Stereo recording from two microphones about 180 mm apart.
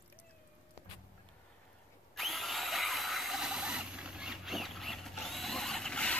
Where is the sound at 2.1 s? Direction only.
Centre (ahead or behind).